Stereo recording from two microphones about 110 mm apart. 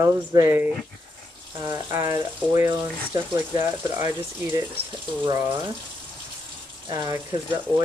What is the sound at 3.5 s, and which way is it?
Speech, 25° right (ahead or behind).